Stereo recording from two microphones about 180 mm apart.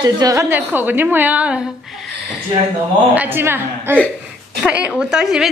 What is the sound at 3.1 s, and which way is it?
A woman's voice, 10° right (ahead or behind).